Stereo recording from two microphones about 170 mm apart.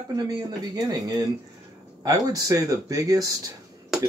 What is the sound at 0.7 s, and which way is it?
Speech, 20° right (ahead or behind).